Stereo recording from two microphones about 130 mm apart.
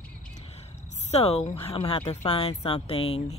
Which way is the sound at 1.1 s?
55° left (ahead or behind).